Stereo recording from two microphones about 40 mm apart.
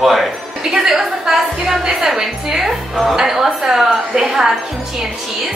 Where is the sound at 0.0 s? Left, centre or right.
Centre.